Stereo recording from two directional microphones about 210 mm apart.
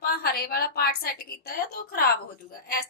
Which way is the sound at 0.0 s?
45° left (ahead or behind).